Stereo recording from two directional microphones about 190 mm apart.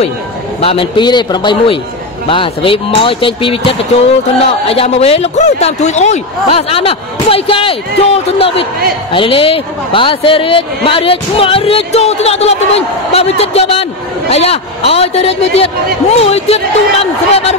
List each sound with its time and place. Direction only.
0.6 s a man's voice: 30° left (ahead or behind)